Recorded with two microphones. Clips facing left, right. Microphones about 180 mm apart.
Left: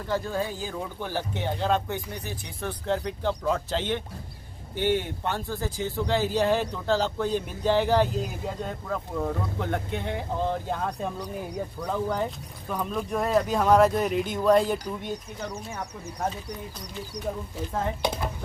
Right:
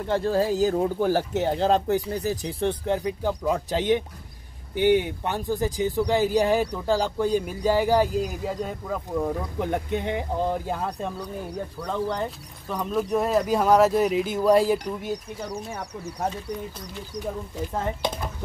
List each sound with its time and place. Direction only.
0.0 s speech: 30° right (ahead or behind)
3.1 s speech: 10° right (ahead or behind)
11.5 s speech: 10° left (ahead or behind)